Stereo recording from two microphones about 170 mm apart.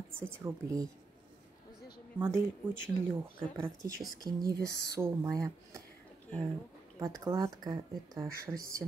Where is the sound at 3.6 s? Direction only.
20° right (ahead or behind).